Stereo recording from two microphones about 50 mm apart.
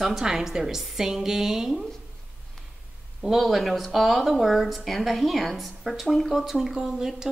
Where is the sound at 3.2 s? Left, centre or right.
Centre.